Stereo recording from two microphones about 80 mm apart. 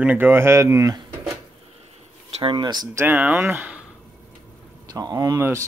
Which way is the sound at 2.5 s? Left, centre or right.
Right.